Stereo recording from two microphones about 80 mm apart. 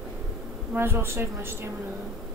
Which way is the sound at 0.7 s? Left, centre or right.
Right.